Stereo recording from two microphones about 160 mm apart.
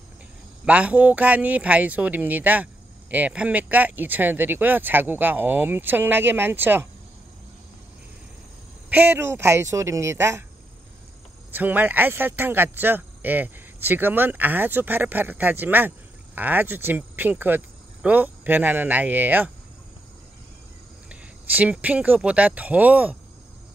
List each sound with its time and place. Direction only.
0.7 s speech: 10° right (ahead or behind)
8.9 s speech: 10° right (ahead or behind)
11.5 s speech: 10° right (ahead or behind)
21.1 s speech: 10° right (ahead or behind)